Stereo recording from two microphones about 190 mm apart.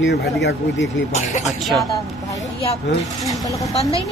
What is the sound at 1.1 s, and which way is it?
Speech, 40° left (ahead or behind).